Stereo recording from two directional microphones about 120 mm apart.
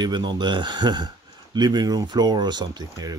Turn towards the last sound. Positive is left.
turn(degrees=-35)  # may be behind; listen again after turning